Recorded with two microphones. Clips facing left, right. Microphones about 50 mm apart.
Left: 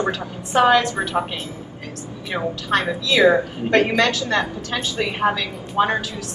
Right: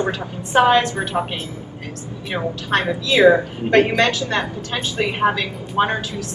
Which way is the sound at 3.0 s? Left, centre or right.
Right.